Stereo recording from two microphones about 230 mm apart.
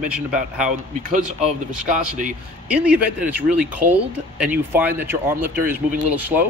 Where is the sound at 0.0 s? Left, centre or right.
Centre.